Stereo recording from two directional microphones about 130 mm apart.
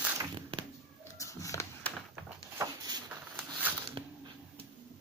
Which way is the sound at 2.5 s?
30° right (ahead or behind).